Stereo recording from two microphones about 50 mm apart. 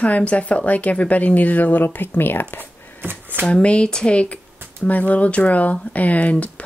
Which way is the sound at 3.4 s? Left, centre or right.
Left.